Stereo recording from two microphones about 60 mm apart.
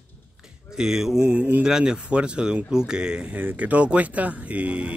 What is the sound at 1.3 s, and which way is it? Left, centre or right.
Speech, right.